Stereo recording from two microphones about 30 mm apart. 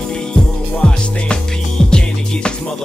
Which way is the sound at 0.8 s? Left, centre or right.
Left.